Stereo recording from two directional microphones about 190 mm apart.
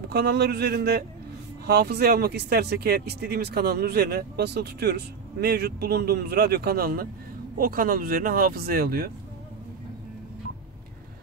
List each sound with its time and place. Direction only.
0.1 s speech: 55° right (ahead or behind)